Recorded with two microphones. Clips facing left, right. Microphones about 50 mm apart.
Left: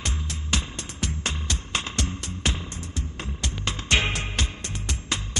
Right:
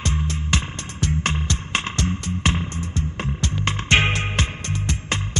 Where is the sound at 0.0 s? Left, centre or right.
Right.